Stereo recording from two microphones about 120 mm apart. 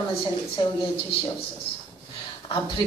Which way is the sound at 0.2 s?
45° left (ahead or behind).